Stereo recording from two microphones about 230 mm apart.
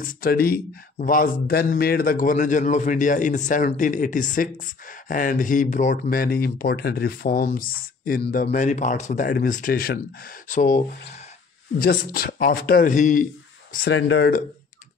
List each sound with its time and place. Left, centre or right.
0.0 s speech: left
13.9 s speech: left